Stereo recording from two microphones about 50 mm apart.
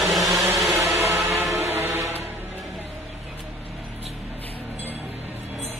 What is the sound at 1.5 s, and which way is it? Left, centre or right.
Music, right.